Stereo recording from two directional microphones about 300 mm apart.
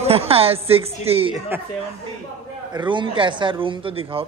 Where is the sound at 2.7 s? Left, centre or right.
Centre.